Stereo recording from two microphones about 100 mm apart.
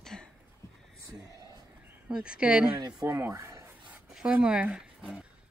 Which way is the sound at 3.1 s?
25° right (ahead or behind).